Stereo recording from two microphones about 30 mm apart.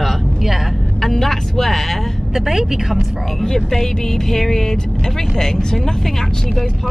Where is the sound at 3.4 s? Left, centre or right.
Centre.